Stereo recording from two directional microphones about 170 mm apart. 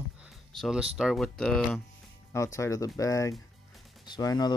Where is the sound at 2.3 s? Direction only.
20° left (ahead or behind).